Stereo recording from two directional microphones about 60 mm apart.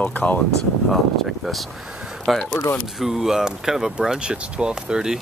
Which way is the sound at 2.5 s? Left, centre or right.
Left.